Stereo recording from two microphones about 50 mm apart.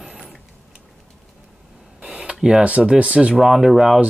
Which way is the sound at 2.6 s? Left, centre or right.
Right.